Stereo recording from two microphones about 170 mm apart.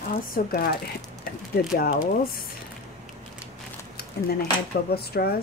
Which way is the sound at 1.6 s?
65° left (ahead or behind).